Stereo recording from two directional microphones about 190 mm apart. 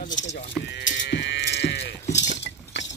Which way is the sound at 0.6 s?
65° left (ahead or behind).